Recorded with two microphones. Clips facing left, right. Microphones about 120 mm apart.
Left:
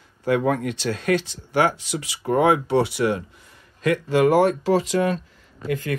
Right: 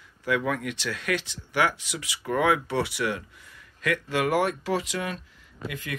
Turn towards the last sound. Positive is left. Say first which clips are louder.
# left 10 dB
turn(degrees=40)  # may be behind; listen again after turning